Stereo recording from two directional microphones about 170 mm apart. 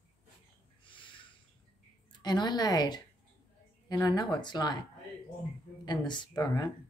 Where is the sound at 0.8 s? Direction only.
30° left (ahead or behind).